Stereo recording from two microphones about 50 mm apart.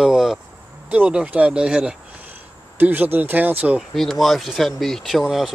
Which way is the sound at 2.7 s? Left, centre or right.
Right.